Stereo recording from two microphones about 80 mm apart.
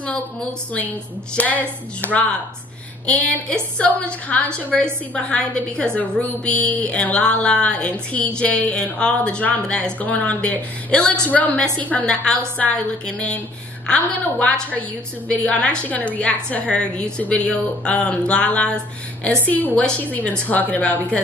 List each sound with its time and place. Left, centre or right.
0.7 s a woman's voice: centre
3.1 s a woman's voice: centre